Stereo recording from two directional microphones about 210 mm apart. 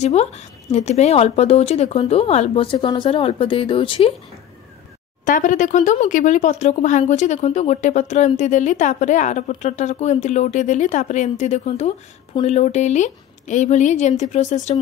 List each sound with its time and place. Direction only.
0.0 s speech: 30° left (ahead or behind)
5.2 s speech: 40° left (ahead or behind)